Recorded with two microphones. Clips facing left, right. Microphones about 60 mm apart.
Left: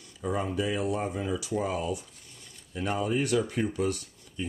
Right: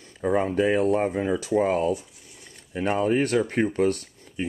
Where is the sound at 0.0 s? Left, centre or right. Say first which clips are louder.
Right 7 dB; right.